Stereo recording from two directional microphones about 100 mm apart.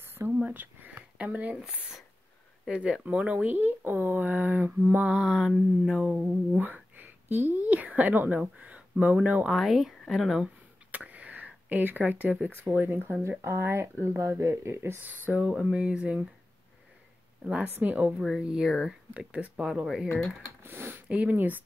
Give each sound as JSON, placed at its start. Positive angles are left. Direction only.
{"t": 0.0, "sound": "a sound", "side_deg": -25}
{"t": 2.6, "sound": "speech", "side_deg": -10}
{"t": 6.1, "sound": "speech", "side_deg": -15}
{"t": 8.4, "sound": "a sound", "side_deg": -15}
{"t": 9.0, "sound": "speech", "side_deg": -15}
{"t": 9.5, "sound": "speech", "side_deg": 0}
{"t": 10.9, "sound": "a sound", "side_deg": -15}
{"t": 12.7, "sound": "speech", "side_deg": -20}
{"t": 15.2, "sound": "speech", "side_deg": -15}
{"t": 17.5, "sound": "speech", "side_deg": -15}
{"t": 20.6, "sound": "speech", "side_deg": -20}